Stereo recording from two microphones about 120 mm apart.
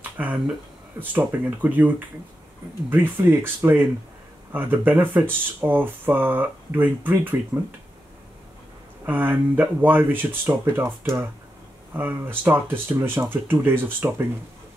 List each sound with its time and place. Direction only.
0.0 s a sound: 15° right (ahead or behind)
0.9 s speech: 15° right (ahead or behind)
9.0 s speech: 15° right (ahead or behind)